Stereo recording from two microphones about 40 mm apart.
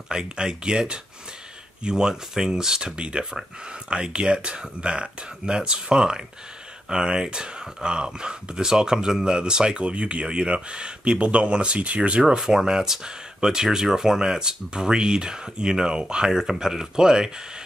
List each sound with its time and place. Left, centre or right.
0.1 s speech: right
12.4 s speech: centre